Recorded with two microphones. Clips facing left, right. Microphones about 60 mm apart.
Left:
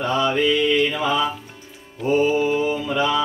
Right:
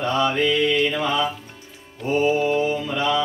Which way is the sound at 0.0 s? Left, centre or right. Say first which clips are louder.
Left 1 dB; centre.